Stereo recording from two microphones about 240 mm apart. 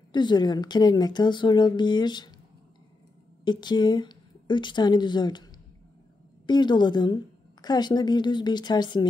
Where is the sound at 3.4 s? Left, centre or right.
Centre.